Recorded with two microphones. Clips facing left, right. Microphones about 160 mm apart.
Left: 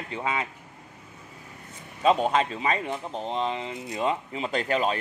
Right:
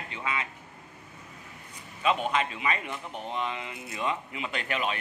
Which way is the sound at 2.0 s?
35° left (ahead or behind).